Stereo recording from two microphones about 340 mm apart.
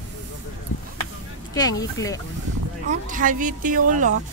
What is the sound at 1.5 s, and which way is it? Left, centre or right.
Speech, centre.